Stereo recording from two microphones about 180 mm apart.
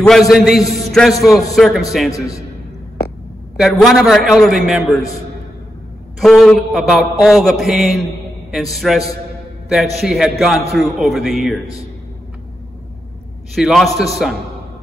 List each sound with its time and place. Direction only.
0.0 s a man's voice: centre (ahead or behind)
2.0 s a man's voice: 20° left (ahead or behind)
3.5 s a man's voice: centre (ahead or behind)
6.1 s a man's voice: centre (ahead or behind)
11.6 s a man's voice: 20° left (ahead or behind)
13.6 s a man's voice: centre (ahead or behind)